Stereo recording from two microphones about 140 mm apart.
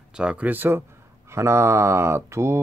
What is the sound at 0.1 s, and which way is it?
Speech, 5° right (ahead or behind).